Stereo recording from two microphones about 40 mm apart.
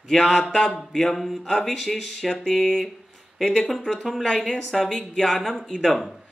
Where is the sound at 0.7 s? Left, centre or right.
Centre.